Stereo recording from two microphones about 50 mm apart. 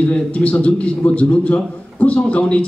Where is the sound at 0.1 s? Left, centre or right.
Left.